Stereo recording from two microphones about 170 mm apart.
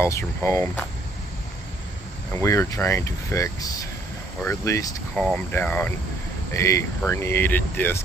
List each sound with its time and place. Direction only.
0.0 s speech: 15° left (ahead or behind)
2.4 s speech: 15° left (ahead or behind)
5.1 s speech: 5° left (ahead or behind)